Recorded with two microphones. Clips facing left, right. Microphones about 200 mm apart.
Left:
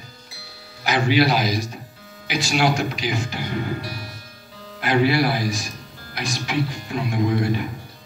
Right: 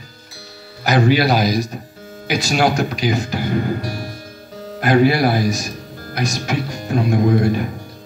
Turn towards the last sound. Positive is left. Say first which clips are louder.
# right 6 dB
turn(degrees=-45)  # may be behind; listen again after turning